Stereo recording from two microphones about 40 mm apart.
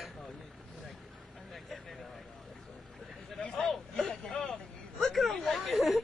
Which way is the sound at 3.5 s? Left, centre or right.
Centre.